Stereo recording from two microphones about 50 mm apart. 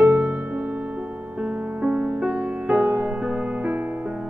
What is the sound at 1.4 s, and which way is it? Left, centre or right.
Music, right.